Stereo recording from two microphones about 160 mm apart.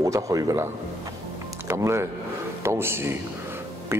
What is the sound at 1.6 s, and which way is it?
Speech, 15° right (ahead or behind).